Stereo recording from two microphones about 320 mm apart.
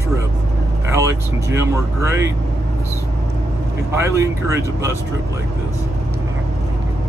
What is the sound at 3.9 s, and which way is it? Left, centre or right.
Speech, centre.